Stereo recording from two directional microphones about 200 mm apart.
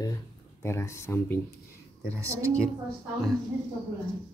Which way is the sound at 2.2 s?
15° right (ahead or behind).